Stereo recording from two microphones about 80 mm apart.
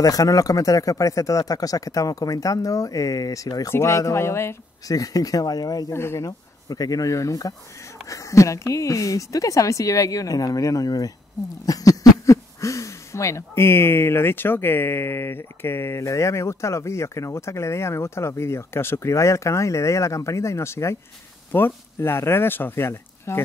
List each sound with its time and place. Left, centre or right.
0.0 s speech: left
4.8 s speech: left
5.9 s speech: left
6.2 s speech: left